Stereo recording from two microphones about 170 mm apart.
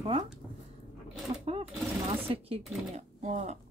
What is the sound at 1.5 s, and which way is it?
Speech, 35° right (ahead or behind).